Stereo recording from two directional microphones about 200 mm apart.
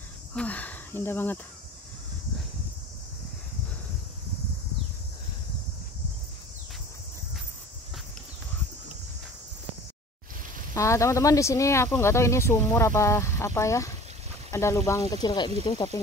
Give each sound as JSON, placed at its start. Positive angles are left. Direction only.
{"t": 0.3, "sound": "speech", "side_deg": 5}
{"t": 10.7, "sound": "speech", "side_deg": 15}